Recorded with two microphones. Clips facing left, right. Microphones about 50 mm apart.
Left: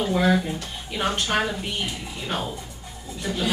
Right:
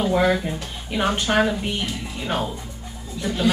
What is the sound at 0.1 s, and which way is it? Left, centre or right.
Speech, centre.